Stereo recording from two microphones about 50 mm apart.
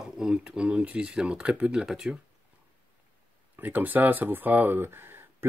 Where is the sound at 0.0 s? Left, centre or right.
Centre.